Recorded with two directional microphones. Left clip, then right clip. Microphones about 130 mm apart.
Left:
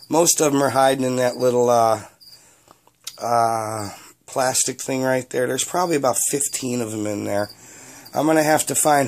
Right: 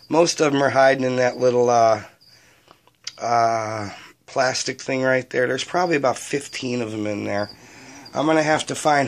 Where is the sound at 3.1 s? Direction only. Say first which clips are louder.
Even; 35° left (ahead or behind).